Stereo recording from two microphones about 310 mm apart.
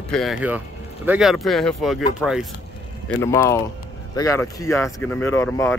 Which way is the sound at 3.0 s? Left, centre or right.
Centre.